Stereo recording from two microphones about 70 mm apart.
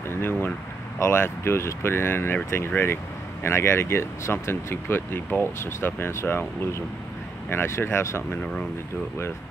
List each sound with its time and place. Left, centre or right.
0.1 s speech: left
7.4 s speech: left